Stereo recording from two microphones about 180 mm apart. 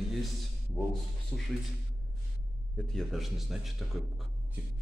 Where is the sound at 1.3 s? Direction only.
10° left (ahead or behind).